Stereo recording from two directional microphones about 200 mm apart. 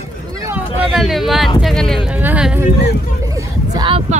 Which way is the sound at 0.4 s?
10° right (ahead or behind).